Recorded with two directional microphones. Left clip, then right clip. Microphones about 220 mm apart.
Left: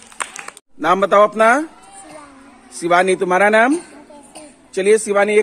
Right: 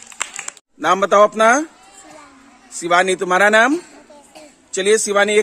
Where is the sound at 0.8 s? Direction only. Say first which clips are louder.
Even; 15° right (ahead or behind).